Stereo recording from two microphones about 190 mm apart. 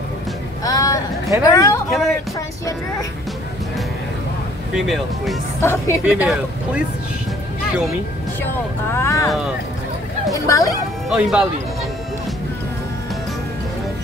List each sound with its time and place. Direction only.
0.7 s a sound: 15° left (ahead or behind)
1.5 s speech: 15° left (ahead or behind)
1.9 s speech: centre (ahead or behind)
4.7 s speech: centre (ahead or behind)
5.6 s speech: 15° left (ahead or behind)
6.0 s speech: 5° right (ahead or behind)
8.9 s vehicle: 15° left (ahead or behind)
10.4 s speech: 15° left (ahead or behind)
11.1 s speech: 5° right (ahead or behind)